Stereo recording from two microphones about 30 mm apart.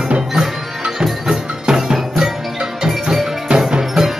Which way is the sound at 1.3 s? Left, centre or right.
Right.